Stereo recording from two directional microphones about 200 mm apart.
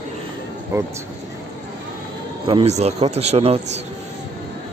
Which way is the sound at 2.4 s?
30° right (ahead or behind).